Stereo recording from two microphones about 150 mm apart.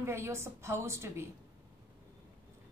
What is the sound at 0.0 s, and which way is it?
A woman's voice, 15° right (ahead or behind).